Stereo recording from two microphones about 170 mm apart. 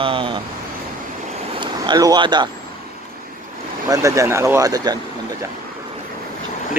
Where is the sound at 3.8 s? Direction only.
20° right (ahead or behind).